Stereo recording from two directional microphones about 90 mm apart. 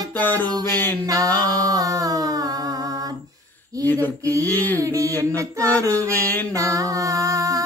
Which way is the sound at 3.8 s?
20° left (ahead or behind).